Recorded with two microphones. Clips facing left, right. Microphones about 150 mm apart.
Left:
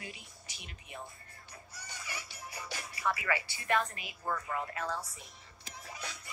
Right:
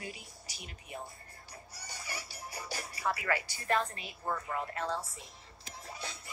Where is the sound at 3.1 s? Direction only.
45° right (ahead or behind).